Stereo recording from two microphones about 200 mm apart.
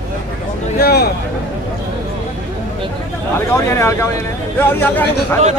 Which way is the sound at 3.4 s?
15° left (ahead or behind).